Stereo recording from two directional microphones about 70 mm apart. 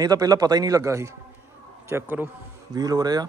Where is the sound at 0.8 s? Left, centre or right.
Right.